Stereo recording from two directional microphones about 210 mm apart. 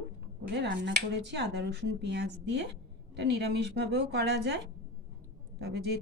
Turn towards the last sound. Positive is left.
turn(degrees=-50)  # may be behind; listen again after turning